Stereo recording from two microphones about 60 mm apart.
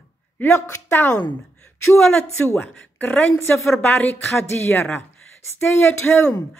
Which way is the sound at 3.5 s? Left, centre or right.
Left.